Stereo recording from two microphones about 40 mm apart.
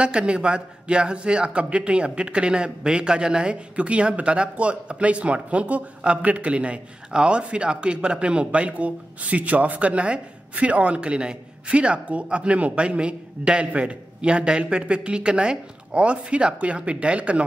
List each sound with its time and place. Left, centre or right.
0.0 s a man's voice: right